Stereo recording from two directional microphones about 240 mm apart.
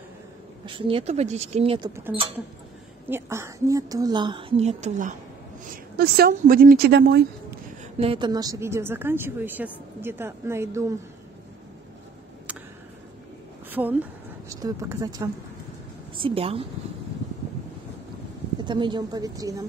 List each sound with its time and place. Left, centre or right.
0.7 s a woman's voice: right
3.1 s a woman's voice: centre; by 7.2 s right
8.0 s a woman's voice: right
13.7 s a sound: centre
14.5 s a woman's voice: centre
18.6 s a woman's voice: centre